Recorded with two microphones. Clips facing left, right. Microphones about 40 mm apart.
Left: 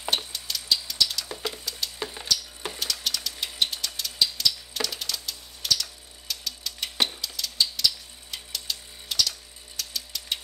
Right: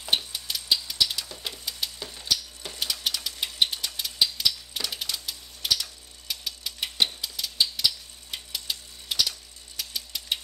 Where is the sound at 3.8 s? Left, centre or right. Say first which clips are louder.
Even; centre.